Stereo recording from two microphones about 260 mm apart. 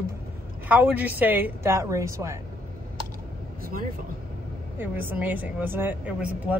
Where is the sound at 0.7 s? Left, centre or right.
Centre.